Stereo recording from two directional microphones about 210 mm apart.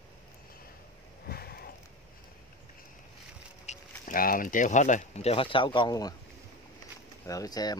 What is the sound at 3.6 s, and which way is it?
Speech, 40° left (ahead or behind).